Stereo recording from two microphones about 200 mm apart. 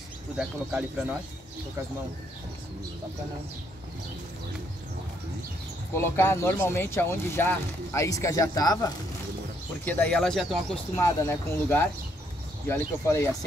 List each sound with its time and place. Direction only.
0.4 s speech: 5° right (ahead or behind)
5.9 s speech: 10° left (ahead or behind)
9.8 s speech: 5° left (ahead or behind)
11.0 s speech: 15° left (ahead or behind)